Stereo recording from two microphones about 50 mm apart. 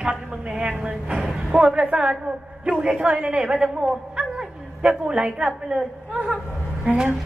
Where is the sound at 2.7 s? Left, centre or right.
Right.